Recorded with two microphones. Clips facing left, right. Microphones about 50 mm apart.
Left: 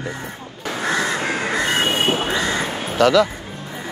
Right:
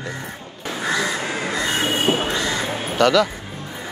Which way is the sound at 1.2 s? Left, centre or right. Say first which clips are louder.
Left 3 dB; left.